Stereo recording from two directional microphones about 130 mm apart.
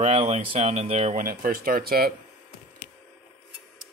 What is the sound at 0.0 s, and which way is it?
Speech, 55° right (ahead or behind).